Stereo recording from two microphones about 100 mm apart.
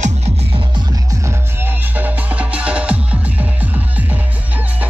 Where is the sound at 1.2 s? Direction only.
20° right (ahead or behind).